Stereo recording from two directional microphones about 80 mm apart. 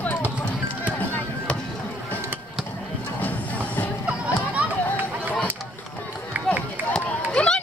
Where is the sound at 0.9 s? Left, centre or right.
Centre.